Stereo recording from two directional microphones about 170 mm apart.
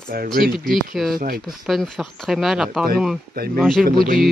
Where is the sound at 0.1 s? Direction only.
60° right (ahead or behind).